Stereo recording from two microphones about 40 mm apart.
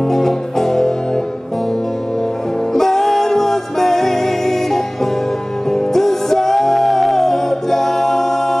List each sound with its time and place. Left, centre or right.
0.0 s music: centre
2.7 s music: centre